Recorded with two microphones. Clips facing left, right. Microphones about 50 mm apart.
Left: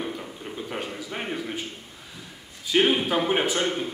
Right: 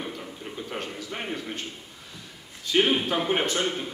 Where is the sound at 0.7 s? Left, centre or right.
Centre.